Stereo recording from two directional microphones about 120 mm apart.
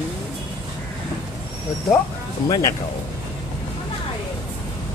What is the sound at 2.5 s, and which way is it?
Speech, 30° left (ahead or behind).